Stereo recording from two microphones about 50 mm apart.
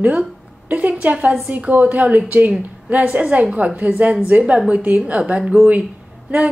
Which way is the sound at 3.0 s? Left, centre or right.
Centre.